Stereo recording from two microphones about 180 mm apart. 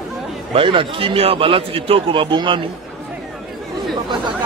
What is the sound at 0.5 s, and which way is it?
A man's voice, 30° right (ahead or behind).